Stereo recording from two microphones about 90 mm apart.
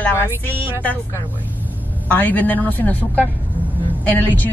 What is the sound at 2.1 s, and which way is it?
A man's voice, 20° left (ahead or behind).